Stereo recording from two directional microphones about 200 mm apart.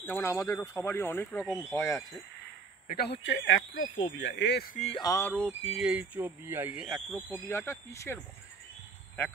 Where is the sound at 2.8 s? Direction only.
50° left (ahead or behind); by 3.8 s 75° left (ahead or behind).